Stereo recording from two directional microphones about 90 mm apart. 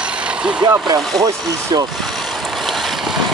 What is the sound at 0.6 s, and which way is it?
Speech, 45° right (ahead or behind).